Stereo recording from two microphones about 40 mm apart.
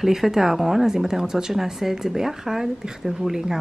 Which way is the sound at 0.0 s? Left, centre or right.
Centre.